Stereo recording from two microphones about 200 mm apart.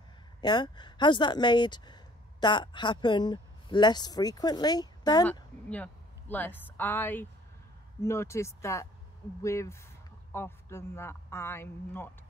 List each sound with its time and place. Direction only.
0.4 s a woman's voice: 20° left (ahead or behind)
5.2 s a man's voice: 5° left (ahead or behind)